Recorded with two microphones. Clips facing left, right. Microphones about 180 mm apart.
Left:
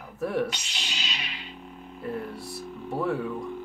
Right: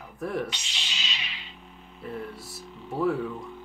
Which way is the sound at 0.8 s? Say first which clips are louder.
Left 2 dB; 40° left (ahead or behind).